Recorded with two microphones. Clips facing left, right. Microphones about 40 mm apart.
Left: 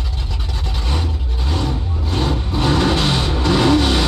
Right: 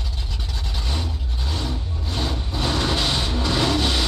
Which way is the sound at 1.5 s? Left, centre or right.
Left.